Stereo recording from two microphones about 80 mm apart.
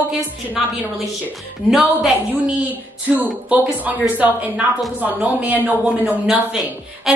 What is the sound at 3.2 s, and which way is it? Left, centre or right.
Speech, right.